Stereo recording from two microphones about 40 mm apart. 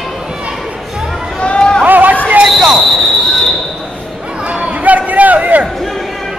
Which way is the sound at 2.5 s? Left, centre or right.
Centre.